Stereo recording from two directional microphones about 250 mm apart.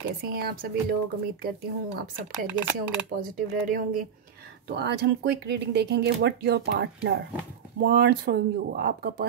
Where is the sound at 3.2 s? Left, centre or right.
Right.